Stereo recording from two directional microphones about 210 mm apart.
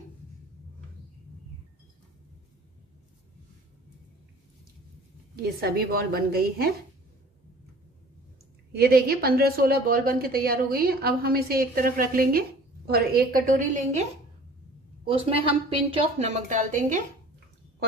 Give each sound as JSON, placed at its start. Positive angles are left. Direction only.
{"t": 5.3, "sound": "a woman's voice", "side_deg": -45}
{"t": 8.7, "sound": "a woman's voice", "side_deg": -45}
{"t": 15.0, "sound": "a woman's voice", "side_deg": -25}